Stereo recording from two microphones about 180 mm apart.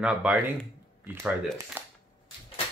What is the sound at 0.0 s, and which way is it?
Speech, 5° right (ahead or behind).